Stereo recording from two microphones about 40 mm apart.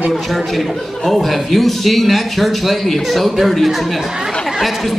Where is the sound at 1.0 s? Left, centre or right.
Centre.